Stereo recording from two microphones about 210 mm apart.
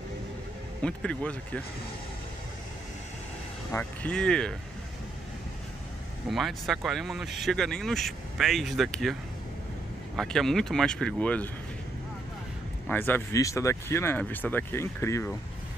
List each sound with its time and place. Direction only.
0.8 s speech: 5° left (ahead or behind)
3.7 s speech: 5° left (ahead or behind)
6.2 s speech: centre (ahead or behind)
10.1 s speech: centre (ahead or behind)
12.8 s speech: 10° left (ahead or behind)